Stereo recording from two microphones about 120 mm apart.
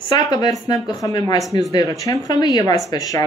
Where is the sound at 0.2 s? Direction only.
30° left (ahead or behind).